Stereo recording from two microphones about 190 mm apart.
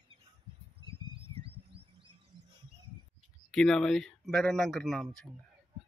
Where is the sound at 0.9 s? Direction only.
30° right (ahead or behind).